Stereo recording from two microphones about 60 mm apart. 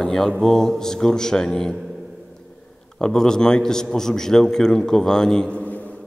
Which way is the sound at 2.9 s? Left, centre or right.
Centre.